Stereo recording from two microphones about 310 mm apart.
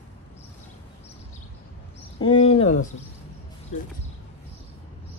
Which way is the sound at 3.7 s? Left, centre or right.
Left.